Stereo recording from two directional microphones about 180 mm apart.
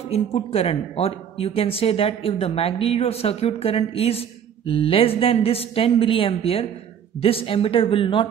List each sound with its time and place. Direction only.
0.1 s a woman's voice: 35° left (ahead or behind)